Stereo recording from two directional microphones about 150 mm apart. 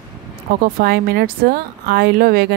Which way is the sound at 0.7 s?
90° right.